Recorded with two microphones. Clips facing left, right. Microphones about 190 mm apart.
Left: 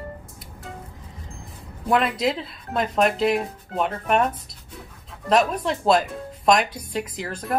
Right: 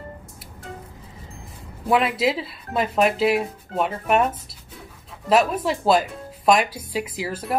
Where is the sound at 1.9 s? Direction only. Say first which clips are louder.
Right 1 dB; centre (ahead or behind).